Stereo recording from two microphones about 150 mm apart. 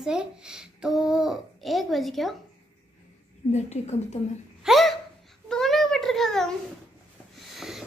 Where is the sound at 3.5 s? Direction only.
45° left (ahead or behind).